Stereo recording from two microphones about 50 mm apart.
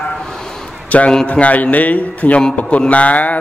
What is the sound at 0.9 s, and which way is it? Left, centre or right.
A man's voice, left.